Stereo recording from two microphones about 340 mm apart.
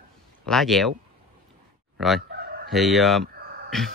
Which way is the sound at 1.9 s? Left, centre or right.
Centre.